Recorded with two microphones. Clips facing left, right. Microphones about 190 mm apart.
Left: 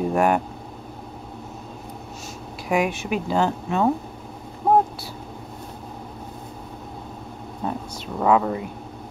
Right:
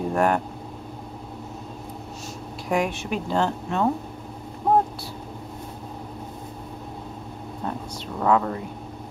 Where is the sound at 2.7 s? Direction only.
5° left (ahead or behind).